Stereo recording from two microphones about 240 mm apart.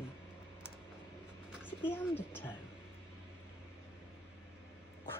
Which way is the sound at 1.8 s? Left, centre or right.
Centre.